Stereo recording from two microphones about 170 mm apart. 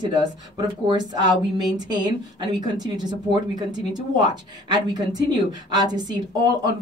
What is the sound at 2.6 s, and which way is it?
Speech, 25° right (ahead or behind).